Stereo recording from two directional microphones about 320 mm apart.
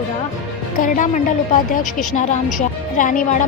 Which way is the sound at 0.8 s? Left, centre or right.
Left.